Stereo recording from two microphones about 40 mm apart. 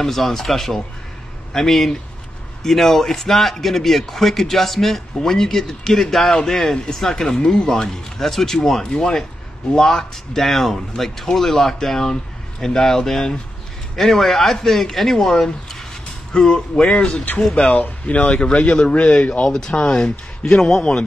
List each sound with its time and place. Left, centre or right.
0.0 s speech: centre
7.3 s speech: left
8.2 s speech: centre; by 17.3 s left
17.7 s speech: left
18.2 s speech: left
19.5 s speech: left